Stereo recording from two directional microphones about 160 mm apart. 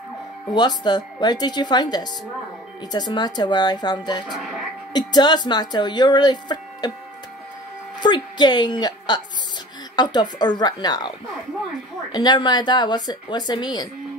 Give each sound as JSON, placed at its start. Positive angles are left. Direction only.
{"t": 0.6, "sound": "speech", "side_deg": 25}
{"t": 8.0, "sound": "a woman's voice", "side_deg": 25}
{"t": 12.1, "sound": "speech", "side_deg": 25}